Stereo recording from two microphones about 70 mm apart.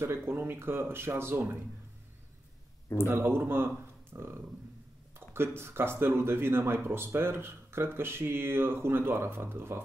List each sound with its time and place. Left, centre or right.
0.0 s speech: right
3.1 s speech: right
5.3 s speech: right